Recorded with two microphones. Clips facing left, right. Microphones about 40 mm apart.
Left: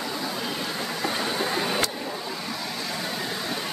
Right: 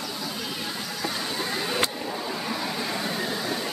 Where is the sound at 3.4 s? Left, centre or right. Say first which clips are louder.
Right 1 dB; centre.